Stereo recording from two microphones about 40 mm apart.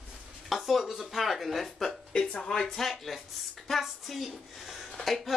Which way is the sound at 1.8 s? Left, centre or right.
Centre.